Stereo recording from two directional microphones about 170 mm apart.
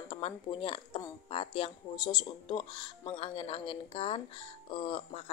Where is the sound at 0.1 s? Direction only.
30° left (ahead or behind).